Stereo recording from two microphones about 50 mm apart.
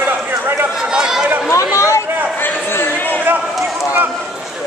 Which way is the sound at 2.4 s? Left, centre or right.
Left.